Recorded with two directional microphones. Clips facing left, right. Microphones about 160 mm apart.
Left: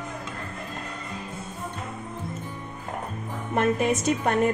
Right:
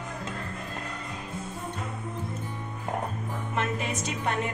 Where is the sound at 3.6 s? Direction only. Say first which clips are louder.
Left 8 dB; 50° left (ahead or behind).